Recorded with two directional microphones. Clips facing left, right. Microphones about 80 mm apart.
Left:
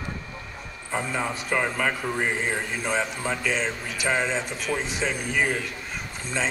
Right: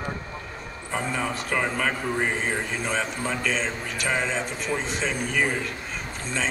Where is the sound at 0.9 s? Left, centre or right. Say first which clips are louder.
Even; centre.